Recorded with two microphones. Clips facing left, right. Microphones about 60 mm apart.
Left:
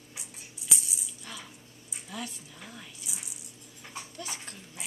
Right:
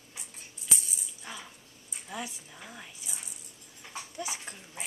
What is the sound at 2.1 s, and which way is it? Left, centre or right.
Speech, centre.